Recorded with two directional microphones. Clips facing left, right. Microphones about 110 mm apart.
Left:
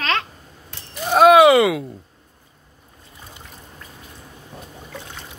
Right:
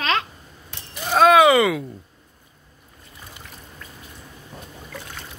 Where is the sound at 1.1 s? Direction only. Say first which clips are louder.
Left 3 dB; 5° left (ahead or behind).